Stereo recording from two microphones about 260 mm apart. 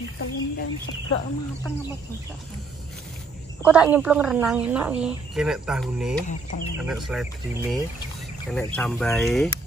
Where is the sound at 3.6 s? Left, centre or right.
Centre.